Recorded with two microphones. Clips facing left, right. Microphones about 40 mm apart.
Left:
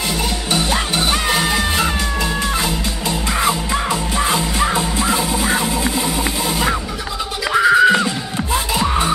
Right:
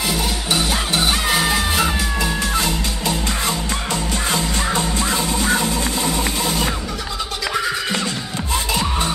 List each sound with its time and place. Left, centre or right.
0.5 s music: centre
7.5 s music: left